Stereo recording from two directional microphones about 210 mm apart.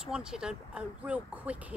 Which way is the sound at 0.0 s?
5° right (ahead or behind).